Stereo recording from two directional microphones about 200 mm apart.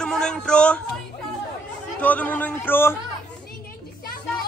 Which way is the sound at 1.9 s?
10° left (ahead or behind).